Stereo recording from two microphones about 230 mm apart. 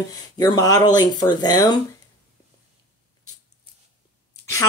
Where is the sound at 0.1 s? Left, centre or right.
Centre.